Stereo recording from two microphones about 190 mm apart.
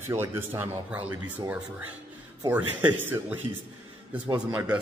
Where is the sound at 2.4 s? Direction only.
15° right (ahead or behind).